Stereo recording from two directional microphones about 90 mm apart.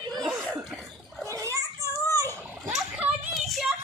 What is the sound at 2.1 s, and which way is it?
Dog, 35° right (ahead or behind).